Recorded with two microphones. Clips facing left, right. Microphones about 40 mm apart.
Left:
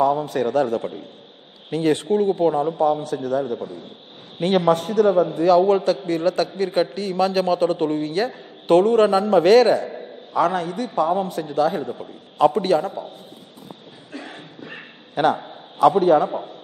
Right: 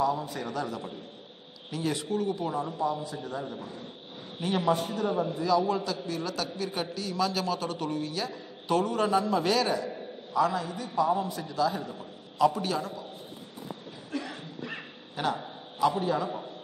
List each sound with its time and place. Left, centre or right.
0.0 s a man's voice: left
14.1 s a sound: left
15.1 s a man's voice: left